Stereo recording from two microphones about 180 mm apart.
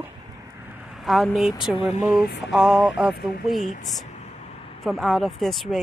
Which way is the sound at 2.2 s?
70° left (ahead or behind).